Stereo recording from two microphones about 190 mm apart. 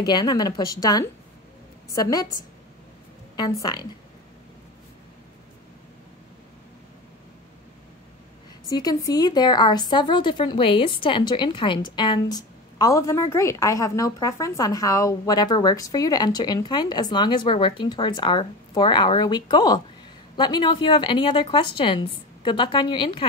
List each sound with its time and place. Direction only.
0.0 s speech: 20° left (ahead or behind)
3.3 s speech: 20° left (ahead or behind)
8.6 s speech: 20° left (ahead or behind)